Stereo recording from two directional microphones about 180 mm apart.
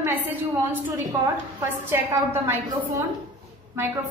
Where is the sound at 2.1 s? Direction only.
15° right (ahead or behind).